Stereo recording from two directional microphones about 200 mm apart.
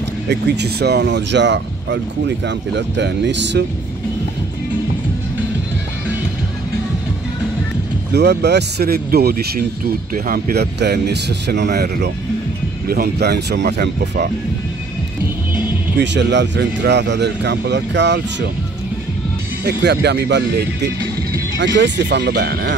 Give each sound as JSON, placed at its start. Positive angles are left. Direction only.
{"t": 0.3, "sound": "speech", "side_deg": -55}
{"t": 8.1, "sound": "speech", "side_deg": -55}
{"t": 16.0, "sound": "speech", "side_deg": -60}
{"t": 19.6, "sound": "speech", "side_deg": -55}